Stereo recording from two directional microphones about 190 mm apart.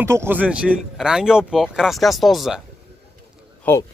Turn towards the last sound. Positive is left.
turn(degrees=10)  # may be behind; listen again after turning